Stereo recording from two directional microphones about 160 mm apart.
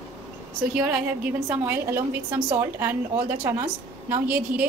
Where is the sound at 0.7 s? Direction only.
5° right (ahead or behind).